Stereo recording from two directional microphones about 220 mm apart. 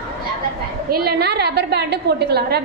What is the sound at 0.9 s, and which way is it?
A woman's voice, 45° right (ahead or behind).